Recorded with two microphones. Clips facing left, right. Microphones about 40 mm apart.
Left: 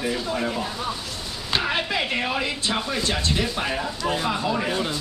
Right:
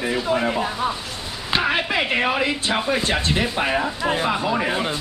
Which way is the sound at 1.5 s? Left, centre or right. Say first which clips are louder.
Right 3 dB; centre.